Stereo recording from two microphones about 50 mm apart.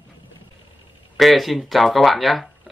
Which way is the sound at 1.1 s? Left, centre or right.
Centre.